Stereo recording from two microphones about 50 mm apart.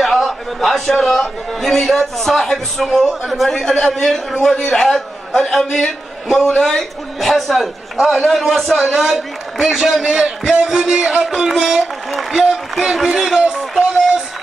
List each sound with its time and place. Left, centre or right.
0.0 s a man's voice: centre
10.5 s music: centre